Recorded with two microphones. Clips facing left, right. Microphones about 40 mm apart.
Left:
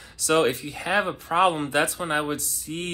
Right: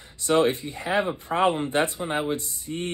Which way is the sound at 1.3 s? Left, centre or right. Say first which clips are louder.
Left 2 dB; centre.